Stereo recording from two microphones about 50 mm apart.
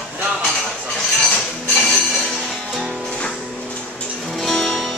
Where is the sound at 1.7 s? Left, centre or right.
Centre.